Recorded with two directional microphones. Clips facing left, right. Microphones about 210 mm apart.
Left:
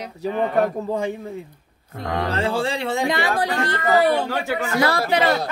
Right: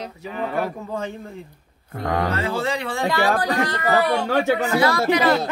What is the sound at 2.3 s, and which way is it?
Speech, 30° left (ahead or behind).